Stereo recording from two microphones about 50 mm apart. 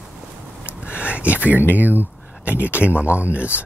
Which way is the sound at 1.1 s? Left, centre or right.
Right.